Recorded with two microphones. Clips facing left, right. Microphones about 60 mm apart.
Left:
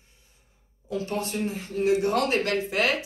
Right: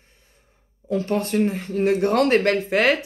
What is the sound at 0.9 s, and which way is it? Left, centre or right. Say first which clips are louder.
Speech: right 7 dB; right.